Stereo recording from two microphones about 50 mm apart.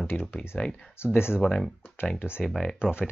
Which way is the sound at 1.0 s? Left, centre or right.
Left.